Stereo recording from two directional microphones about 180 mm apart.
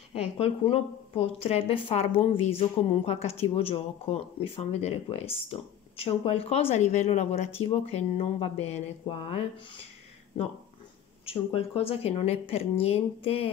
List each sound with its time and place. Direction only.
0.1 s a woman's voice: 35° left (ahead or behind)
11.2 s a woman's voice: 30° left (ahead or behind)